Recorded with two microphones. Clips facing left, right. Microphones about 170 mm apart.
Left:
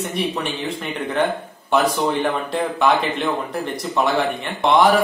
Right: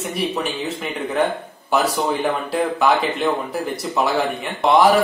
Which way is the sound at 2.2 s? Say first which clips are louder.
Right 1 dB; centre (ahead or behind).